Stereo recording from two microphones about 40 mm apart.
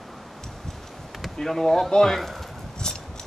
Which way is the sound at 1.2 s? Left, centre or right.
Centre.